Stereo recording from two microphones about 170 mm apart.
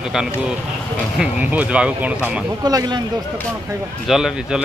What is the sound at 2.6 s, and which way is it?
Speech, 25° right (ahead or behind).